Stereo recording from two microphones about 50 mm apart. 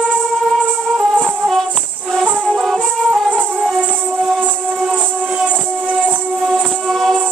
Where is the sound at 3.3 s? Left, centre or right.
Centre.